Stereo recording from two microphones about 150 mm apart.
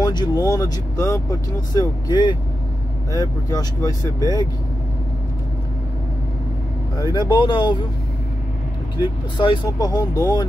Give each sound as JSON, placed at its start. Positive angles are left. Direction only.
{"t": 0.0, "sound": "speech", "side_deg": 30}
{"t": 7.0, "sound": "speech", "side_deg": 25}
{"t": 9.0, "sound": "speech", "side_deg": 30}